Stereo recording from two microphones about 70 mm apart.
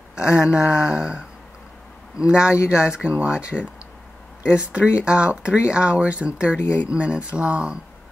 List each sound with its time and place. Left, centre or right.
0.1 s speech: centre
6.6 s speech: left
6.9 s speech: centre